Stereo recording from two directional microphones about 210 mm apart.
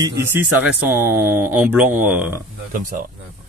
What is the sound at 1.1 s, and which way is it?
Speech, 90° right.